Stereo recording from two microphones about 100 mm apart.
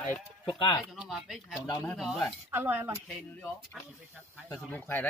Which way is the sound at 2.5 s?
20° right (ahead or behind).